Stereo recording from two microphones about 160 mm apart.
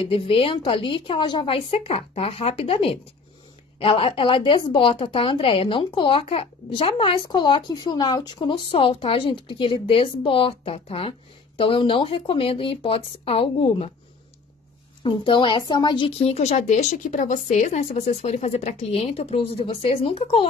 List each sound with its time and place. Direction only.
0.0 s speech: 35° left (ahead or behind)
15.0 s speech: 30° left (ahead or behind)